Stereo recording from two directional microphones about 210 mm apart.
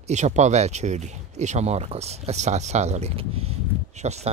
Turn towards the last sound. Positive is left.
turn(degrees=-30)  # may be behind; listen again after turning